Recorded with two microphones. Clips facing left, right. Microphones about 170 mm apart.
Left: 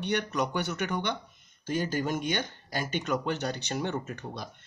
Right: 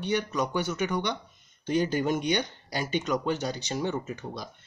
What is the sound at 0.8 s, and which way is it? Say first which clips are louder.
Speech: right 2 dB; 15° right (ahead or behind).